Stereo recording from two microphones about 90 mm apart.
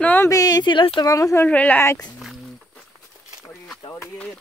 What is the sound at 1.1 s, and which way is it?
Speech, 40° left (ahead or behind).